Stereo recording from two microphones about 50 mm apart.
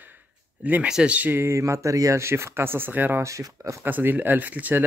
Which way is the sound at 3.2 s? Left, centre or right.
Right.